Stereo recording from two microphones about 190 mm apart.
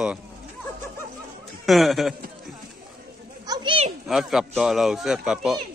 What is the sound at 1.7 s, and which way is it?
Speech, centre (ahead or behind).